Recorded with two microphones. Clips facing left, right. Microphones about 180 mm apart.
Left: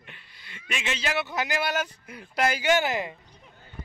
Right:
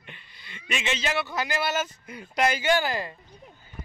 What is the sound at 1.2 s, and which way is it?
Speech, 20° left (ahead or behind).